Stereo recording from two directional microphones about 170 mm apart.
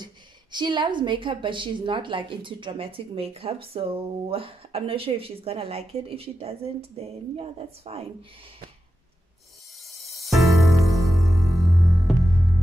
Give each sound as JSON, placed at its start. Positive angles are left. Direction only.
{"t": 0.0, "sound": "a woman's voice", "side_deg": -25}
{"t": 10.0, "sound": "music", "side_deg": 0}